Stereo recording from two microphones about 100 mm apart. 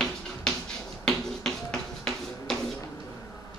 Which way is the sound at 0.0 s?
5° left (ahead or behind).